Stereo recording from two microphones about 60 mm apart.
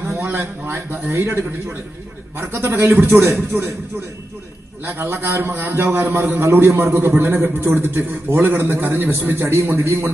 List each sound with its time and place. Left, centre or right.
0.0 s a sound: right
0.4 s a man's voice: right
4.8 s a man's voice: right